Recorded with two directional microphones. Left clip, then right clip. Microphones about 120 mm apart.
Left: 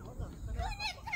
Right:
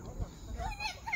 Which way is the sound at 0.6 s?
20° right (ahead or behind).